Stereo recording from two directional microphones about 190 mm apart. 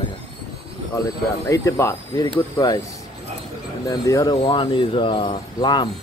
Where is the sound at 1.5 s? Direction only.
15° left (ahead or behind).